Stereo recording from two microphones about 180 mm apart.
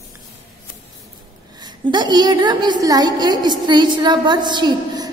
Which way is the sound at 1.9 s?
25° right (ahead or behind).